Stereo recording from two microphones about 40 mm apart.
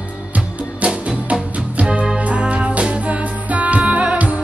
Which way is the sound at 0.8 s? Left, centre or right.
Right.